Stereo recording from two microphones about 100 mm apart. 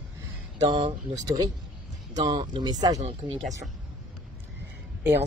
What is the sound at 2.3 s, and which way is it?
Speech, 55° right (ahead or behind).